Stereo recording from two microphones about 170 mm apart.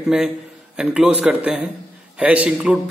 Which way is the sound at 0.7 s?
5° right (ahead or behind).